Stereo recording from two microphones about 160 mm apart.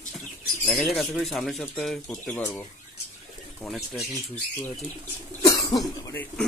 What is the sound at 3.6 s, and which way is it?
Speech, centre (ahead or behind).